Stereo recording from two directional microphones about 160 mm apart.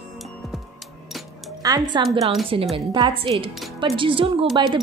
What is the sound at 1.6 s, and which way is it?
A woman's voice, 25° right (ahead or behind).